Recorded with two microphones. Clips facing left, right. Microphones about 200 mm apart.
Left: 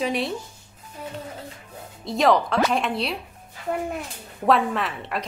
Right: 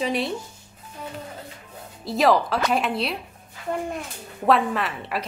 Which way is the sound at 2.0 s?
5° right (ahead or behind).